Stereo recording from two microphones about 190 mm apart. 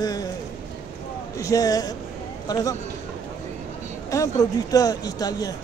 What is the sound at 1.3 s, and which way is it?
Speech, 15° left (ahead or behind).